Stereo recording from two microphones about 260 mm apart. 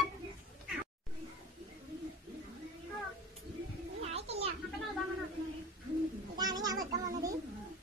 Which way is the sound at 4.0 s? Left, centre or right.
Right.